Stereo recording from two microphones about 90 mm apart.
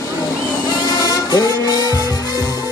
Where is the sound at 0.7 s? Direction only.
50° left (ahead or behind).